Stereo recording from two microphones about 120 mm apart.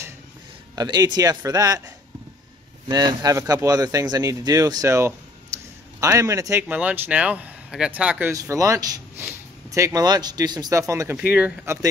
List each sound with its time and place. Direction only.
0.7 s speech: 35° right (ahead or behind)
2.9 s speech: 35° right (ahead or behind)
6.7 s speech: 10° right (ahead or behind)
8.3 s speech: 25° right (ahead or behind)
11.1 s speech: 10° right (ahead or behind)
11.6 s speech: 25° right (ahead or behind)